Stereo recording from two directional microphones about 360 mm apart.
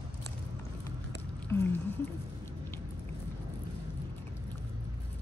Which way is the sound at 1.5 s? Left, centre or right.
Centre.